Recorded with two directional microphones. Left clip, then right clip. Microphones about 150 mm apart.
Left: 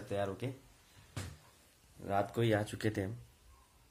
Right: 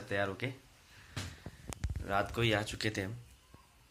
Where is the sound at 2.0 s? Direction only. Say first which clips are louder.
Right 1 dB; 30° left (ahead or behind); by 3.0 s 50° left (ahead or behind).